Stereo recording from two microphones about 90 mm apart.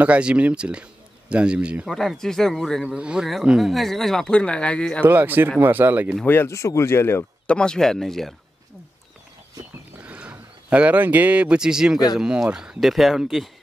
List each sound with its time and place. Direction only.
0.0 s speech: 15° right (ahead or behind)
1.9 s speech: 5° left (ahead or behind)
2.9 s speech: 10° right (ahead or behind); by 5.0 s 10° left (ahead or behind)
5.0 s speech: 20° right (ahead or behind)
6.2 s speech: 20° left (ahead or behind)
6.5 s speech: 35° left (ahead or behind)
7.4 s speech: 10° left (ahead or behind)
9.9 s speech: 15° right (ahead or behind)